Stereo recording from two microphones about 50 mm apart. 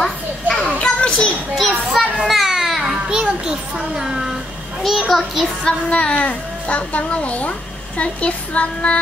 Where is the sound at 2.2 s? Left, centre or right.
Centre.